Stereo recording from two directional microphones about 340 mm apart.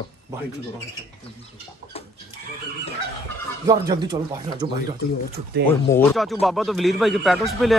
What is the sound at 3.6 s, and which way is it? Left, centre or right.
Speech, centre.